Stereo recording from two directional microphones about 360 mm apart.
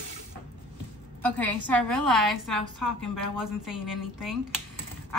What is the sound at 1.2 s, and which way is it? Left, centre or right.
A woman's voice, centre.